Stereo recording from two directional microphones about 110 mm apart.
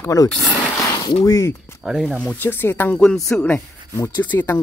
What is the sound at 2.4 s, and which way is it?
Speech, 20° left (ahead or behind).